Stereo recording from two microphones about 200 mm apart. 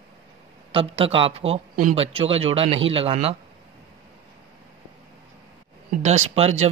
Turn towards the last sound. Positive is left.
turn(degrees=-35)  # may be behind; listen again after turning